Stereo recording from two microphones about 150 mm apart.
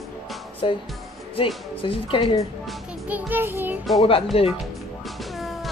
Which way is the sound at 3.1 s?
15° right (ahead or behind).